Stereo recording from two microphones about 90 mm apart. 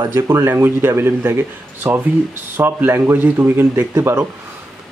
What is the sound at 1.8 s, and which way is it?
Speech, 15° right (ahead or behind).